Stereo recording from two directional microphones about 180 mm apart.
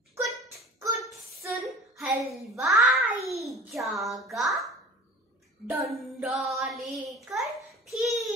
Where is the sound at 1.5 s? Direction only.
Centre (ahead or behind).